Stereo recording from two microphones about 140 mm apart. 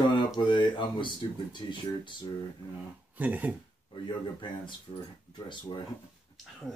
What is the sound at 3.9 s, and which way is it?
Speech, 35° left (ahead or behind).